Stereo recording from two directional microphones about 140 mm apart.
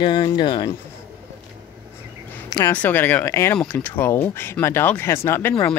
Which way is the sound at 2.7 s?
15° left (ahead or behind).